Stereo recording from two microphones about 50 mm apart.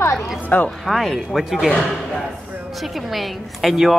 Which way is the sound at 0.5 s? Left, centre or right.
Left.